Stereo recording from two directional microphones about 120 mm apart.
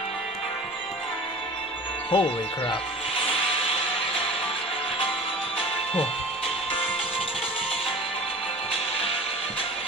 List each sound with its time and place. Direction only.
2.0 s speech: 45° left (ahead or behind)